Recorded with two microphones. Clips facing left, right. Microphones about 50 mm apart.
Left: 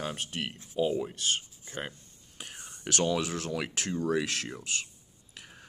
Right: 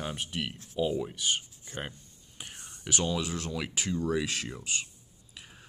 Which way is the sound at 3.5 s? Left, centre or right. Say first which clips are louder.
Right 1 dB; left.